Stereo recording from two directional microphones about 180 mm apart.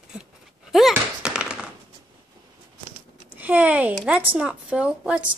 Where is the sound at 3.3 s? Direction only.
10° right (ahead or behind).